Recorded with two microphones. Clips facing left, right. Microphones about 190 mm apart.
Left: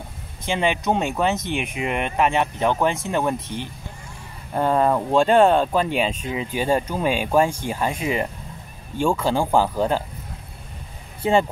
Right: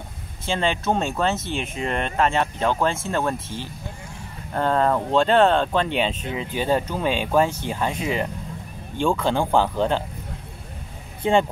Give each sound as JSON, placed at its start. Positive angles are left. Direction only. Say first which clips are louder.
{"t": 0.5, "sound": "speech", "louder": "left 1 dB", "side_deg": 15}
{"t": 11.2, "sound": "speech", "louder": "even", "side_deg": 5}